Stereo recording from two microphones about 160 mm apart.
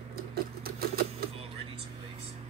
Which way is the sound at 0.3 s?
70° right (ahead or behind).